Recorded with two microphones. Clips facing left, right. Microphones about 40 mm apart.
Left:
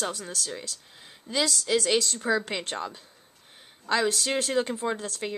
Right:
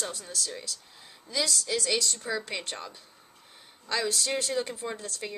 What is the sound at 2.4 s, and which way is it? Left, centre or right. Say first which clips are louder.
Speech: left 4 dB; left.